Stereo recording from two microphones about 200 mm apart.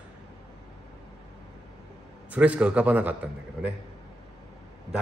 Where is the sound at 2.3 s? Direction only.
5° right (ahead or behind).